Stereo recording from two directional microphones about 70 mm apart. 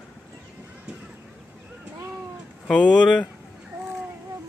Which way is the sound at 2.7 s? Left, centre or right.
Centre.